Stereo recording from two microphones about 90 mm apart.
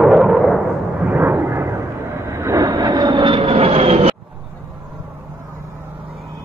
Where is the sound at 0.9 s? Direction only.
20° right (ahead or behind).